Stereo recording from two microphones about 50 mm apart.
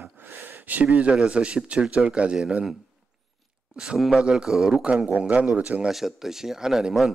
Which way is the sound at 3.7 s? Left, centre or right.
Centre.